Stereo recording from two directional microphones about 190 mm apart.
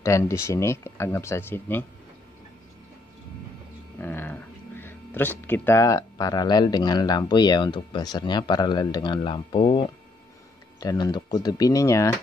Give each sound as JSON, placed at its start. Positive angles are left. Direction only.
{"t": 0.0, "sound": "speech", "side_deg": 15}
{"t": 4.0, "sound": "speech", "side_deg": 10}